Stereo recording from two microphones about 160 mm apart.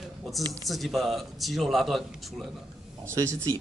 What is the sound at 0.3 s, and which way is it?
Speech, centre (ahead or behind).